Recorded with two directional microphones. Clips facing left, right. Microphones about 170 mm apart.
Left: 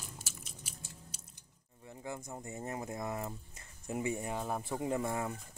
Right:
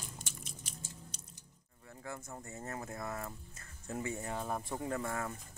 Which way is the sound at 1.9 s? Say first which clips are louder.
Left 3 dB; 15° left (ahead or behind).